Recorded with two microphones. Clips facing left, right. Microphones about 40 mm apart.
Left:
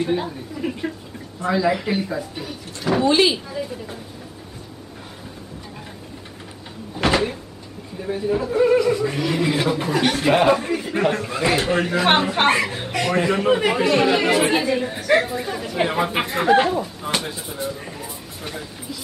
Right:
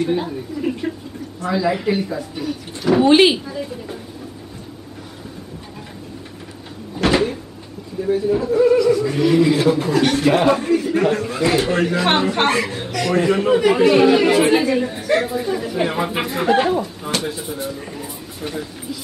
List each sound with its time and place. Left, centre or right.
0.0 s speech: centre
3.1 s speech: right
3.4 s speech: centre
7.1 s cupboard open or close: centre
8.0 s speech: centre
8.5 s a sound: left
9.1 s speech: centre
9.4 s speech: centre
10.8 s speech: centre